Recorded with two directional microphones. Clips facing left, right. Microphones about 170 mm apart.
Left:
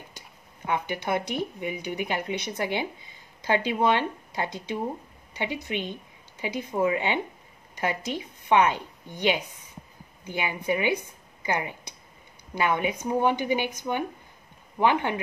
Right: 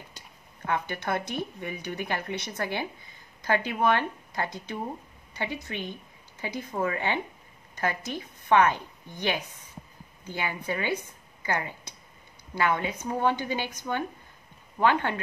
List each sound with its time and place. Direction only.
0.7 s a woman's voice: 15° left (ahead or behind)